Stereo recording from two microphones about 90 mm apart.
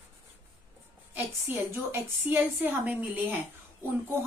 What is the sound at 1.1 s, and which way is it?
A woman's voice, 20° right (ahead or behind).